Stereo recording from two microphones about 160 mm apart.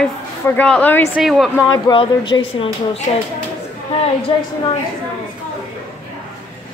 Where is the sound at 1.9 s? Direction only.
30° left (ahead or behind).